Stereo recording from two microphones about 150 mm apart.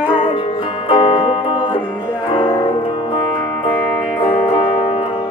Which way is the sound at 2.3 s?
35° left (ahead or behind).